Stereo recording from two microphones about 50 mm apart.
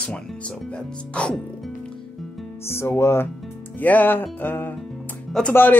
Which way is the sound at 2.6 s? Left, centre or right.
Left.